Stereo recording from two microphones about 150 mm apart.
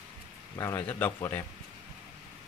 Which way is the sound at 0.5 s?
20° left (ahead or behind).